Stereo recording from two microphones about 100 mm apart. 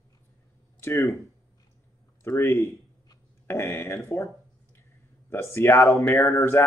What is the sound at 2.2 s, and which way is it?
Speech, 30° left (ahead or behind).